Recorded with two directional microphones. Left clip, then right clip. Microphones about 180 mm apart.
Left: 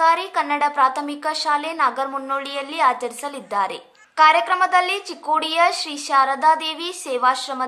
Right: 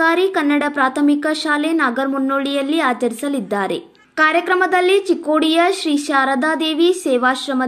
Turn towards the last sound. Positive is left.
turn(degrees=-15)  # may be behind; listen again after turning